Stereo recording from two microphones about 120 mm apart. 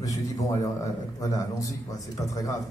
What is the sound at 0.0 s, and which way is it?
A man's voice, 25° left (ahead or behind).